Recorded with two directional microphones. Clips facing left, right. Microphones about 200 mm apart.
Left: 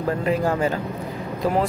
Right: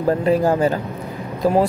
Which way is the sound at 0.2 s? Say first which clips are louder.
Right 5 dB; 35° right (ahead or behind).